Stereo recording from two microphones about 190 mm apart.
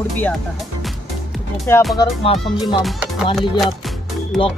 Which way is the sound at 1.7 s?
10° left (ahead or behind).